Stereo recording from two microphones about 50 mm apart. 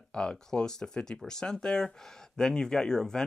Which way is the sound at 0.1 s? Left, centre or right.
Centre.